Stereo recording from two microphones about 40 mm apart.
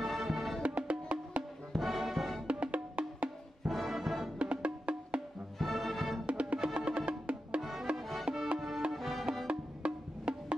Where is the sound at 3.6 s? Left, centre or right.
Centre.